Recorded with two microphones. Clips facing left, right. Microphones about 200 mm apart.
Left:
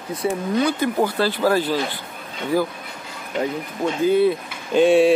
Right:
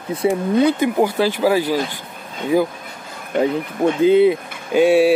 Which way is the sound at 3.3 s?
55° right (ahead or behind).